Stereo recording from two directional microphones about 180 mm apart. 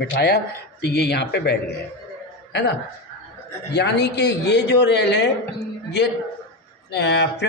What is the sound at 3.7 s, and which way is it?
Speech, 70° left (ahead or behind).